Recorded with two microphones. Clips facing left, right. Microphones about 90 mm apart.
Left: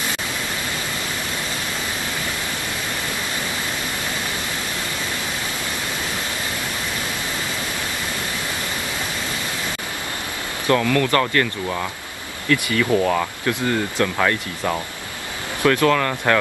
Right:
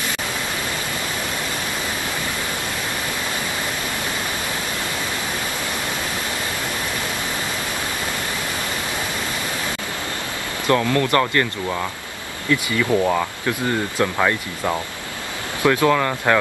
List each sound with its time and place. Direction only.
10.7 s speech: 20° right (ahead or behind)
12.4 s speech: 10° right (ahead or behind)